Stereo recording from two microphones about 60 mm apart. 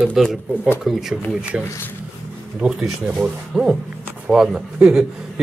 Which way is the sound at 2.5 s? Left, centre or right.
Centre.